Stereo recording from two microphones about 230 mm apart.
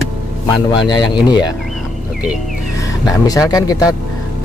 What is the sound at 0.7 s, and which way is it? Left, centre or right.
Speech, centre.